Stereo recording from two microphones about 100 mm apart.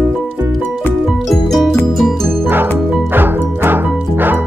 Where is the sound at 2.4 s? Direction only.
20° right (ahead or behind).